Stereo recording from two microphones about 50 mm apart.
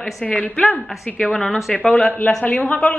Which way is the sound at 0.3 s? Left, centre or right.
Left.